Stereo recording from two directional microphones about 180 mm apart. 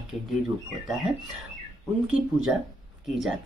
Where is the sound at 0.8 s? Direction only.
Centre (ahead or behind).